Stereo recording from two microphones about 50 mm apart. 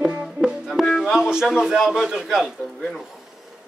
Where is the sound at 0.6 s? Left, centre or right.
Centre.